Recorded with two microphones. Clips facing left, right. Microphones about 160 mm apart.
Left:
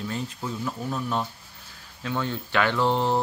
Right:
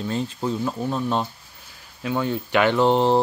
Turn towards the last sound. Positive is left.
turn(degrees=-25)  # may be behind; listen again after turning